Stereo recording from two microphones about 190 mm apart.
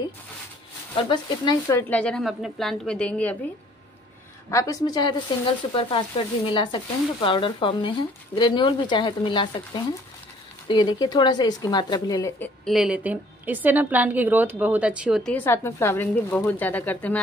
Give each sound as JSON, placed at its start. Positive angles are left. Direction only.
{"t": 0.9, "sound": "speech", "side_deg": 25}
{"t": 4.5, "sound": "speech", "side_deg": 15}
{"t": 10.7, "sound": "speech", "side_deg": 20}
{"t": 12.4, "sound": "a woman's voice", "side_deg": 0}
{"t": 15.3, "sound": "speech", "side_deg": 10}